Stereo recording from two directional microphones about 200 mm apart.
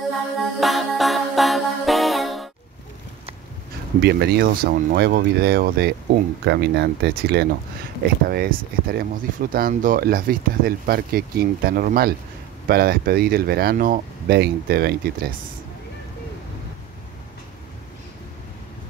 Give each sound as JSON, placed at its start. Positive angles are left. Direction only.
{"t": 0.4, "sound": "music", "side_deg": 0}
{"t": 4.0, "sound": "speech", "side_deg": -55}